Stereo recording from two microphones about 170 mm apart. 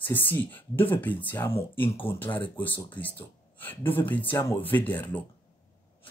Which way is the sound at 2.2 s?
10° left (ahead or behind).